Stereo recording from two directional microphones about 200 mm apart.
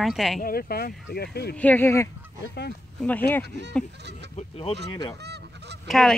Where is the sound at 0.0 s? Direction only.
Centre (ahead or behind).